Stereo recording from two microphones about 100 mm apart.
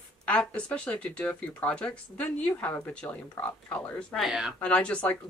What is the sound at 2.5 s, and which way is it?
Speech, 25° left (ahead or behind).